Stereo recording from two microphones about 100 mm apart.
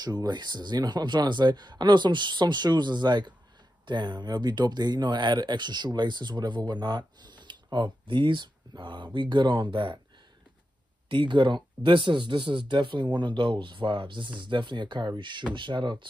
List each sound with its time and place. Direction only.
0.0 s speech: 45° right (ahead or behind)
11.1 s speech: 55° right (ahead or behind)